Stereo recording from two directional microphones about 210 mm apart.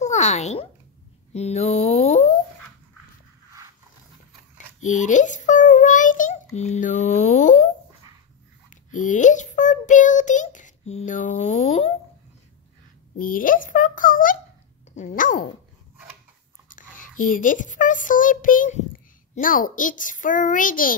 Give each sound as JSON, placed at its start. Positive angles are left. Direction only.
{"t": 0.0, "sound": "a child's voice", "side_deg": 35}
{"t": 4.8, "sound": "a child's voice", "side_deg": 35}
{"t": 8.9, "sound": "a child's voice", "side_deg": 35}
{"t": 13.2, "sound": "a child's voice", "side_deg": 40}
{"t": 16.6, "sound": "a child's voice", "side_deg": 40}